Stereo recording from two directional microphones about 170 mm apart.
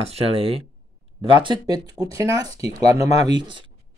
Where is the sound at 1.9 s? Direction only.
20° right (ahead or behind).